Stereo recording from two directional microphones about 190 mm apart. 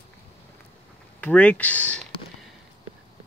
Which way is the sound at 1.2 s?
10° left (ahead or behind).